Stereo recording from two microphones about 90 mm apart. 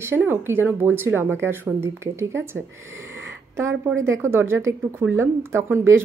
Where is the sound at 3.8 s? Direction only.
30° right (ahead or behind).